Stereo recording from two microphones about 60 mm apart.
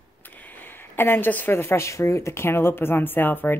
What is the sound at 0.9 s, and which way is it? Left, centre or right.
A woman's voice, left.